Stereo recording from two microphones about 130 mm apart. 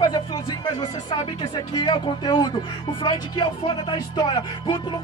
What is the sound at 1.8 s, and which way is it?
Music, 35° left (ahead or behind).